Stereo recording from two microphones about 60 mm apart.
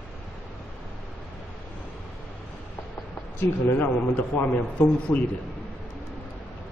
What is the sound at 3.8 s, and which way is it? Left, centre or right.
A man's voice, left.